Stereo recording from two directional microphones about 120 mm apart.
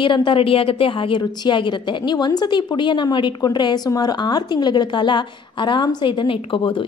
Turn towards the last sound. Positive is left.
turn(degrees=45)  # may be behind; listen again after turning